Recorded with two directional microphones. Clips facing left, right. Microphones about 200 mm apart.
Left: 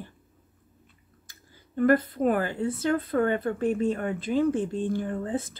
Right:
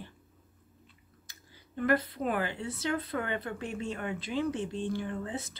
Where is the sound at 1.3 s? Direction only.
45° left (ahead or behind).